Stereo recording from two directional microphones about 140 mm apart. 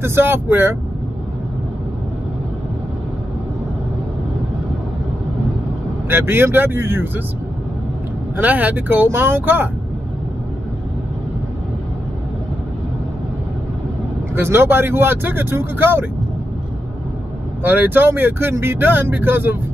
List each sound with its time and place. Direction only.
0.0 s speech: 15° right (ahead or behind)
6.0 s speech: 15° right (ahead or behind)
8.4 s speech: 10° right (ahead or behind)
14.3 s speech: 15° right (ahead or behind)
17.6 s speech: 15° right (ahead or behind)